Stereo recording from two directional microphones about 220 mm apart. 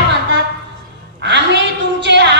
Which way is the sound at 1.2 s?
50° right (ahead or behind).